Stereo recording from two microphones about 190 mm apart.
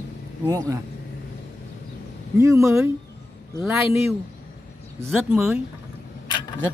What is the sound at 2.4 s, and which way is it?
Speech, 15° right (ahead or behind).